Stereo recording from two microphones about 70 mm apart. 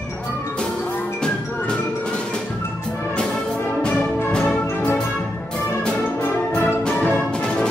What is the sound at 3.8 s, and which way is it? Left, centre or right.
Brass instrument, centre.